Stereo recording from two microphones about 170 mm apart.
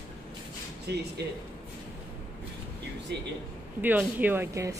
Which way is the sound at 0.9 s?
75° right (ahead or behind).